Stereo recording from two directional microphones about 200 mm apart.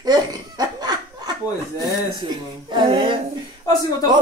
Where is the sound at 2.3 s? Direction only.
25° right (ahead or behind).